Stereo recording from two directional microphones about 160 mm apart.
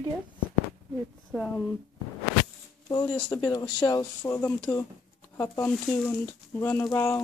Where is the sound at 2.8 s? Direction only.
25° left (ahead or behind).